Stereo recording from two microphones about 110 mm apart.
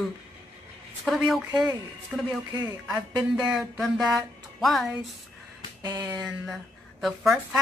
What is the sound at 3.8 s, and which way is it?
Speech, centre (ahead or behind).